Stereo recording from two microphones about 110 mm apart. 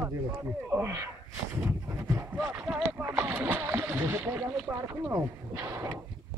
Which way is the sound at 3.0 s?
20° right (ahead or behind).